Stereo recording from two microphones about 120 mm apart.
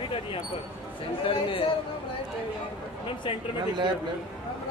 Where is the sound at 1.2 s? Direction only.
50° left (ahead or behind).